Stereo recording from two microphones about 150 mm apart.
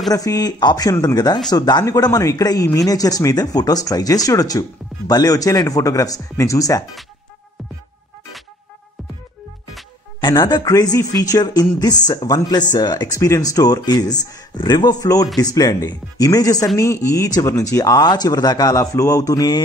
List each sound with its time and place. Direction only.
0.1 s speech: 25° left (ahead or behind)
10.2 s speech: 25° left (ahead or behind)